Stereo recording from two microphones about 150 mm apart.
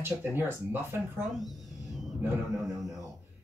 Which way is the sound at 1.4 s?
Centre (ahead or behind).